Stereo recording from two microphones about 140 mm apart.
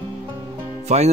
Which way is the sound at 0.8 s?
50° right (ahead or behind).